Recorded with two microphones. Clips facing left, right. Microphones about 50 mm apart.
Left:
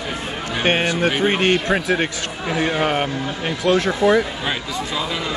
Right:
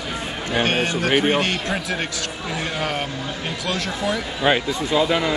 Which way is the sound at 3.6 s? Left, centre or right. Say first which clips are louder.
Left 9 dB; left.